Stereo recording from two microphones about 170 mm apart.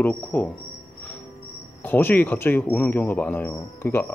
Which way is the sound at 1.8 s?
10° left (ahead or behind).